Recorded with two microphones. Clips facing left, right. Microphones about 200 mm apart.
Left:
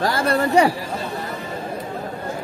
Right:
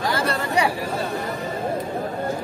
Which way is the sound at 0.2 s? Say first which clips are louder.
Left 6 dB; 50° left (ahead or behind).